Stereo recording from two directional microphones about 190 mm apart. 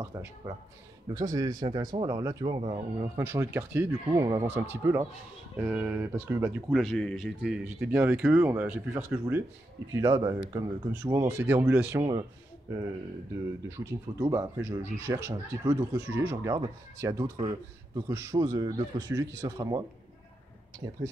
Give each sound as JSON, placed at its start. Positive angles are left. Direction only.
{"t": 0.4, "sound": "speech", "side_deg": -15}
{"t": 6.7, "sound": "speech", "side_deg": 0}
{"t": 13.7, "sound": "speech", "side_deg": -15}
{"t": 20.8, "sound": "speech", "side_deg": -15}